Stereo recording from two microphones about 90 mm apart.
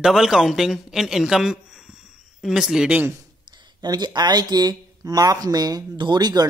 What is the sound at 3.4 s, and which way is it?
Speech, 60° right (ahead or behind).